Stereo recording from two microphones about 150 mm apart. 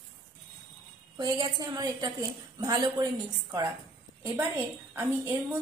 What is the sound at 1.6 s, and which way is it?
A woman's voice, 25° right (ahead or behind).